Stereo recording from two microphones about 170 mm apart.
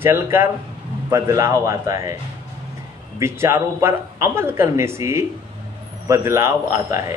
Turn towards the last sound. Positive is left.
turn(degrees=-15)  # may be behind; listen again after turning